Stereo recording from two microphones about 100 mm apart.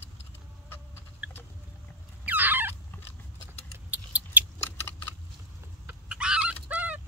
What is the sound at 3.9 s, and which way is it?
Mouse, 15° right (ahead or behind).